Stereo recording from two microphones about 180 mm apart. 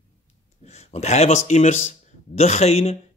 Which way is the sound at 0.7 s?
35° left (ahead or behind).